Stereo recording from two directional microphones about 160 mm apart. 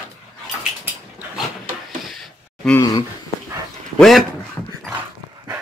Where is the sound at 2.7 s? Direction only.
25° left (ahead or behind).